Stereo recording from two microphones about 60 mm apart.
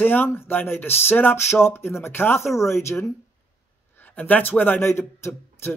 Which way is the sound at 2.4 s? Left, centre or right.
Left.